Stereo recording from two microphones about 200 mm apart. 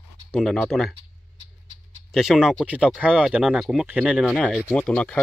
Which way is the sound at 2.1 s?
Centre (ahead or behind).